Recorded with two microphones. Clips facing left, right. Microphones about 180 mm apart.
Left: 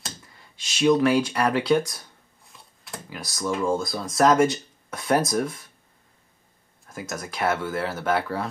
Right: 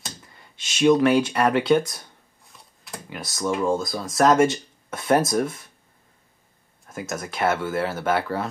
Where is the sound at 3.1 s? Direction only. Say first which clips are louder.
Right 2 dB; 25° right (ahead or behind).